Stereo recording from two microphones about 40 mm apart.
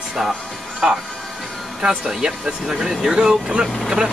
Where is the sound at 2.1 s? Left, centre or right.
Centre.